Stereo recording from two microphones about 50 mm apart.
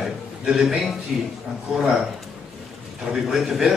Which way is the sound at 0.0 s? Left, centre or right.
Centre.